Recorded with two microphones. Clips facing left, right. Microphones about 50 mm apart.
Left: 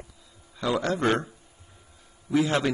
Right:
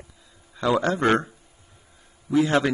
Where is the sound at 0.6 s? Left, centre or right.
Right.